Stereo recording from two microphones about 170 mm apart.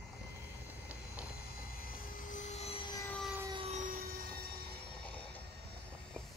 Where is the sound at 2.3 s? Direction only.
40° left (ahead or behind).